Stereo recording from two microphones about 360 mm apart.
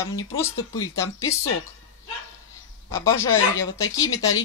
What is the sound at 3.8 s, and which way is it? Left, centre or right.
Speech, left.